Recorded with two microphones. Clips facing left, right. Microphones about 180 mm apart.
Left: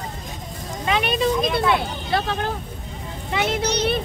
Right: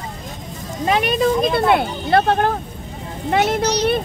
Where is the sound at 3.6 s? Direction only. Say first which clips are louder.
Right 4 dB; 55° left (ahead or behind).